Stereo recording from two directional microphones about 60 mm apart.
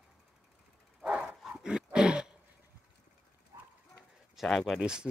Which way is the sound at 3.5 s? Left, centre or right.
Right.